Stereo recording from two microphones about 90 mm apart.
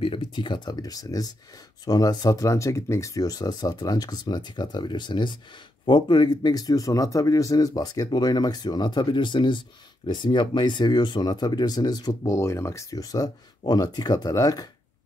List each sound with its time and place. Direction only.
0.0 s speech: 70° left (ahead or behind); by 14.7 s 45° left (ahead or behind)